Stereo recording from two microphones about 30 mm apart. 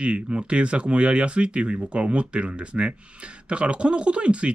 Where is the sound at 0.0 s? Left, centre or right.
Right.